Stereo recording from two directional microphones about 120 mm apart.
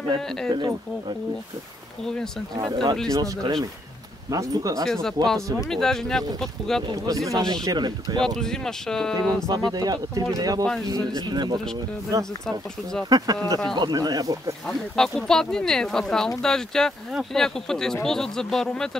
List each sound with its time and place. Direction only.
0.5 s speech: 40° right (ahead or behind)
2.5 s speech: 35° right (ahead or behind)
4.8 s speech: 5° left (ahead or behind)
6.9 s speech: 30° right (ahead or behind)
8.4 s speech: 5° left (ahead or behind)
9.5 s speech: 30° right (ahead or behind)
14.7 s speech: 5° left (ahead or behind)